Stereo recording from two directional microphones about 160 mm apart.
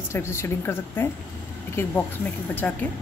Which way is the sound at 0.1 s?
15° left (ahead or behind).